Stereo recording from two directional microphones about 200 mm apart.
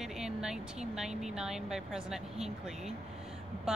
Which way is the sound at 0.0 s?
5° right (ahead or behind).